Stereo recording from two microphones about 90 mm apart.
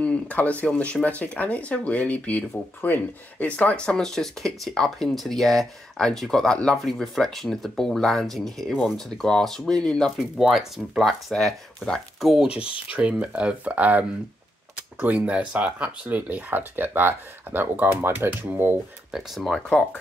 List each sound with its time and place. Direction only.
0.0 s speech: 15° left (ahead or behind); by 12.4 s centre (ahead or behind)
12.6 s speech: 75° left (ahead or behind)
12.9 s speech: 15° right (ahead or behind)
19.1 s speech: centre (ahead or behind)